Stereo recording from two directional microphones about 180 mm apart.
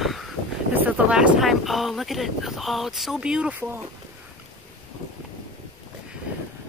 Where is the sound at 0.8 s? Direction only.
10° right (ahead or behind).